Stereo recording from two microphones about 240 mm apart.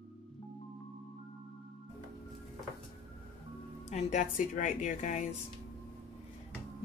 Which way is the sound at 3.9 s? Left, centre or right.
Left.